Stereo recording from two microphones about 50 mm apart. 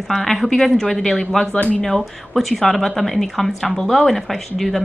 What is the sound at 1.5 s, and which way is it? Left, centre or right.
Speech, left.